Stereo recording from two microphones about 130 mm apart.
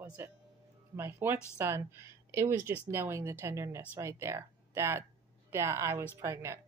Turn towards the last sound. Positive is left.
turn(degrees=-20)  # may be behind; listen again after turning